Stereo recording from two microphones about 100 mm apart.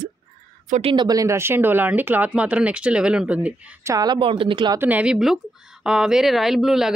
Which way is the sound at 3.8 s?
35° right (ahead or behind).